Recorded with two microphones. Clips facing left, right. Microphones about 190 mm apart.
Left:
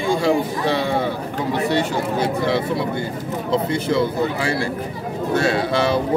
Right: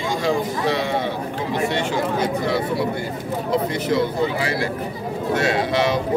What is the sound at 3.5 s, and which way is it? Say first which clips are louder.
Speech: left 1 dB; 25° left (ahead or behind).